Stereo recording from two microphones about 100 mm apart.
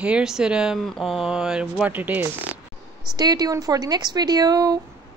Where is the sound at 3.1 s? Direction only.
45° right (ahead or behind).